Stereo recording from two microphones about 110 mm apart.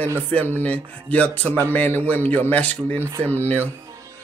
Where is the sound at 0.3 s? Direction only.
15° left (ahead or behind).